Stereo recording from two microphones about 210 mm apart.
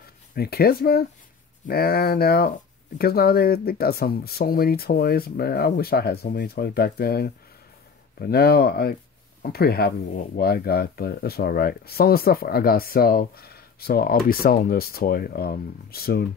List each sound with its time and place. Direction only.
0.3 s speech: 45° left (ahead or behind)